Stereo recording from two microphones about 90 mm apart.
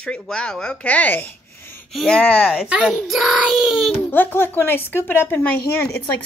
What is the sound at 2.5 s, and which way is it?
Speech, 10° right (ahead or behind).